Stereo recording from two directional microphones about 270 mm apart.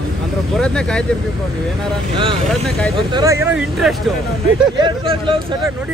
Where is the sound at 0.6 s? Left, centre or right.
Centre.